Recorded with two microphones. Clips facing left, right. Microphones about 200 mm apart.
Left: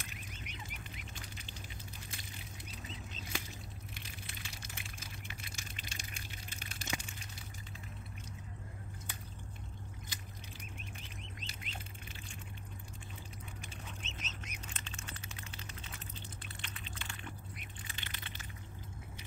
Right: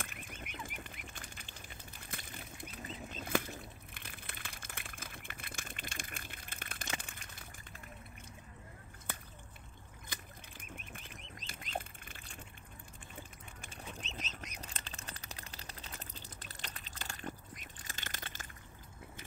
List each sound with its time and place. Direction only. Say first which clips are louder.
0.0 s duck: right 2 dB; 55° right (ahead or behind)
2.0 s bird flight: right 2 dB; 55° right (ahead or behind)
10.0 s bird: even; 55° right (ahead or behind)
14.0 s bird: right 2 dB; 35° right (ahead or behind)